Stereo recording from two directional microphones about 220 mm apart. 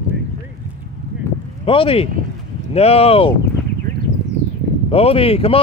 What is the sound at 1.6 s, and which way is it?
Speech, 25° left (ahead or behind).